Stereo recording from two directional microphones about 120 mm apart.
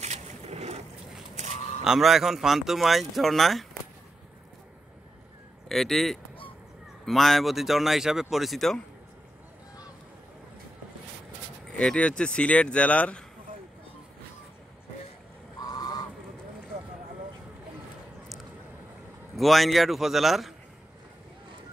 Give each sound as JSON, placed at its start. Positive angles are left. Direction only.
{"t": 0.0, "sound": "boat", "side_deg": -65}
{"t": 1.9, "sound": "speech", "side_deg": 0}
{"t": 5.7, "sound": "speech", "side_deg": 0}
{"t": 11.7, "sound": "speech", "side_deg": 5}
{"t": 15.6, "sound": "goose", "side_deg": 30}
{"t": 19.3, "sound": "speech", "side_deg": 0}